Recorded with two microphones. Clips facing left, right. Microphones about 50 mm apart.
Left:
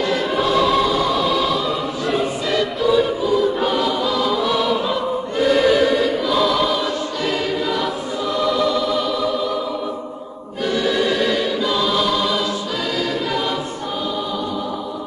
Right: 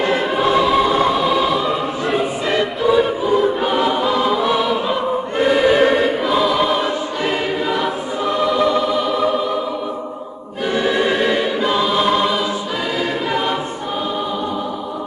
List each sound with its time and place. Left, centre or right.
0.0 s choir: right
0.9 s choir: right
1.2 s choir: right
5.8 s choir: right
9.2 s music: right
10.7 s choir: right